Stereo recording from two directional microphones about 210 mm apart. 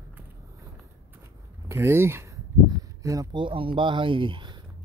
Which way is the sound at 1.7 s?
10° right (ahead or behind).